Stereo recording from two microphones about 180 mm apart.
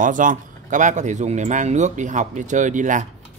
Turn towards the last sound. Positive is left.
turn(degrees=-45)  # may be behind; listen again after turning